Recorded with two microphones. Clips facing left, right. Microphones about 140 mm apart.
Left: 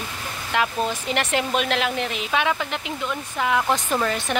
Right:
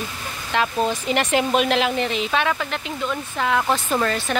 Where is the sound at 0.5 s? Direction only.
5° left (ahead or behind).